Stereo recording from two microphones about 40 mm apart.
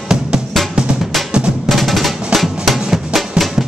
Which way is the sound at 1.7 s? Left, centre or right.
Centre.